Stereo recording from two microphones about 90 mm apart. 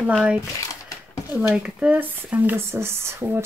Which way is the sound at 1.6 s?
15° right (ahead or behind).